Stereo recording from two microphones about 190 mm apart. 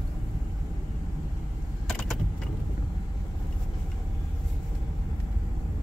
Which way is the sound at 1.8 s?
Centre (ahead or behind).